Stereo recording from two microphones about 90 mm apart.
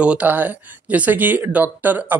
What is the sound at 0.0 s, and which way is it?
Speech, 15° right (ahead or behind).